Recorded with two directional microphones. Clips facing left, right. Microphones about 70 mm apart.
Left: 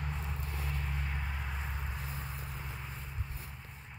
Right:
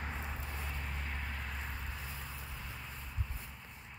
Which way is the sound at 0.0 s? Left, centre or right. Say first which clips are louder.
Left 1 dB; centre.